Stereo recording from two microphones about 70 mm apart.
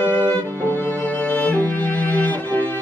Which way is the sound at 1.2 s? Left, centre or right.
Left.